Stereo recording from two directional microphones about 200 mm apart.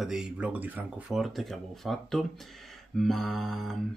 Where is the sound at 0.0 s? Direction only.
5° right (ahead or behind).